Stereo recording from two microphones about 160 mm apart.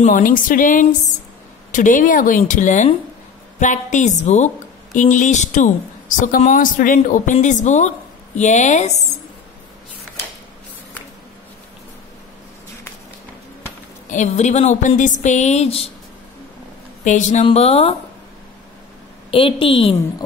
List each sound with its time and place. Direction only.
0.0 s a woman's voice: 55° left (ahead or behind)
14.1 s speech: 45° left (ahead or behind)
17.0 s a woman's voice: 50° left (ahead or behind)
19.3 s a woman's voice: 35° left (ahead or behind)